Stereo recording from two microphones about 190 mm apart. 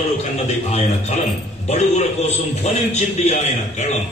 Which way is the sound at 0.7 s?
35° left (ahead or behind).